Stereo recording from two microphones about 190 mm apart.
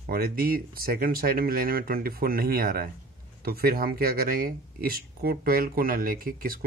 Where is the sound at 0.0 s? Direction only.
50° right (ahead or behind).